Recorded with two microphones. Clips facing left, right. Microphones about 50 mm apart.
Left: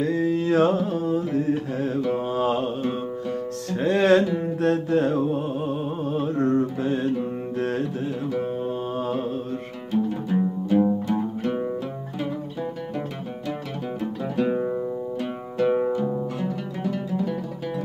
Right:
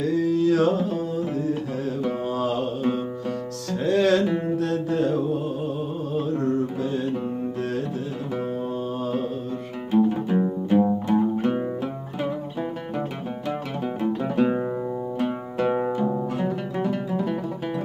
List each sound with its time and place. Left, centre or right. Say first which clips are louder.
0.0 s mantra: right 1 dB; left
3.7 s music: left 2 dB; left
4.6 s mantra: left 2 dB; left
7.5 s music: left 2 dB; left
8.6 s mantra: left 1 dB; left
10.0 s music: right 2 dB; right
14.3 s music: left 1 dB; centre